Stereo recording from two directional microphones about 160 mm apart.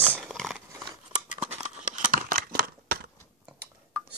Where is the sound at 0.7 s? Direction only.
20° right (ahead or behind).